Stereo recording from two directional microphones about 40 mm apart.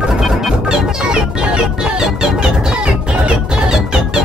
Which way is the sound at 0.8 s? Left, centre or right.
Centre.